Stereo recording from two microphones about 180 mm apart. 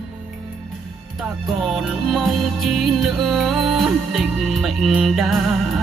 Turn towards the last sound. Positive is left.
turn(degrees=0)  # may be behind; listen again after turning